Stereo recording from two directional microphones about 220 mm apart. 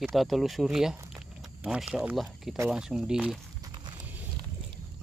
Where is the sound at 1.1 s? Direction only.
5° right (ahead or behind).